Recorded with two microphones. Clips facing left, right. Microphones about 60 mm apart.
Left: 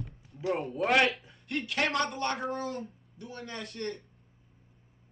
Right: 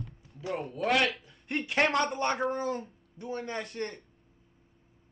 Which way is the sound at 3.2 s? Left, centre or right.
Right.